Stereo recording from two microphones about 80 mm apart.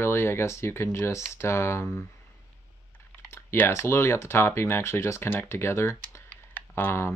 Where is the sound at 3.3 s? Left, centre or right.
Left.